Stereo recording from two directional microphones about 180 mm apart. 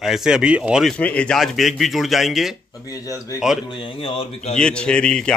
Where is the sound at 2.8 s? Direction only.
20° left (ahead or behind).